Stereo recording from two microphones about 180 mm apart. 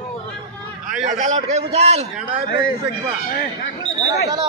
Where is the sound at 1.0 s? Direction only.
40° right (ahead or behind).